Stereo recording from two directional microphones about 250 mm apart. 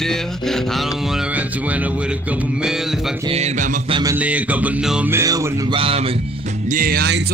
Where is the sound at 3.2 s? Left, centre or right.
Right.